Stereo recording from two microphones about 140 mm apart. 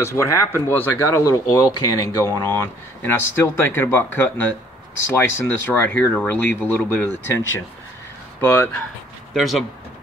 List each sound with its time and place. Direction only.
0.0 s speech: 20° left (ahead or behind)
5.7 s speech: 15° left (ahead or behind)
9.3 s speech: centre (ahead or behind)